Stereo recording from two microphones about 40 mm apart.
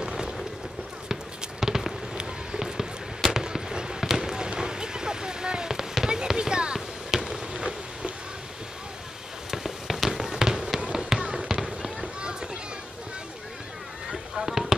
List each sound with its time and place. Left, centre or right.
0.0 s boat: centre
1.6 s a sound: centre
3.3 s basketball bounce: centre
4.5 s fireworks: centre
9.5 s fireworks: centre
10.8 s basketball bounce: centre
12.2 s children playing: right
14.1 s fireworks: centre